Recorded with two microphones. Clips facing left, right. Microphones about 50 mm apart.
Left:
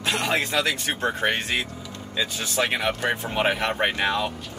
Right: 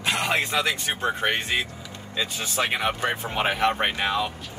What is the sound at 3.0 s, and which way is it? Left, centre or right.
Speech, centre.